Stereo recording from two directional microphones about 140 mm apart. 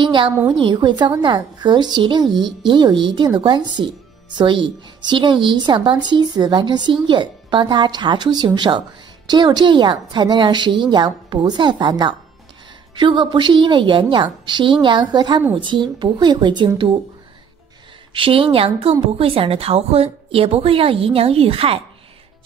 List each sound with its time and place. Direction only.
0.0 s speech: 35° right (ahead or behind)
18.1 s a woman's voice: 40° right (ahead or behind)